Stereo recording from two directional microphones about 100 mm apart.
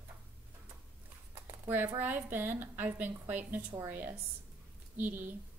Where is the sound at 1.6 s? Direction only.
20° right (ahead or behind).